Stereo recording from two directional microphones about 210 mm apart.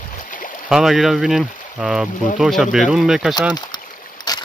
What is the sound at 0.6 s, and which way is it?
Speech, centre (ahead or behind).